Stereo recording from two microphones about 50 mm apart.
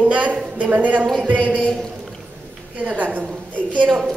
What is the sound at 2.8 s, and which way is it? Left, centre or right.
Speech, right.